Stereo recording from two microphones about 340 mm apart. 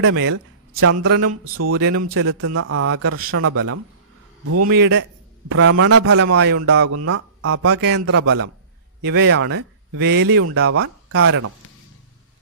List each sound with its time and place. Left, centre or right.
0.0 s speech: right
4.7 s speech: right
8.0 s speech: right
9.0 s speech: right